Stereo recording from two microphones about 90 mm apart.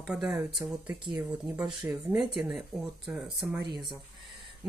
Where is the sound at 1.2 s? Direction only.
10° right (ahead or behind).